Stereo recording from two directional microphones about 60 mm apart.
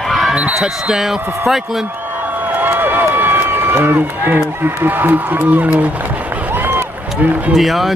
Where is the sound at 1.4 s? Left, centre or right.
Centre.